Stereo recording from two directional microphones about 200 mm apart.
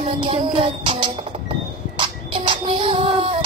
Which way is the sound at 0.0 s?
30° right (ahead or behind).